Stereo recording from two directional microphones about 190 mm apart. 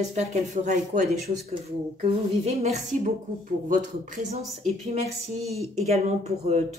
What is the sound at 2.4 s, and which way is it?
Speech, 35° right (ahead or behind).